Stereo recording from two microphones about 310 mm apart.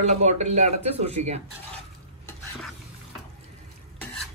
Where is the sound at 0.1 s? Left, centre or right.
Right.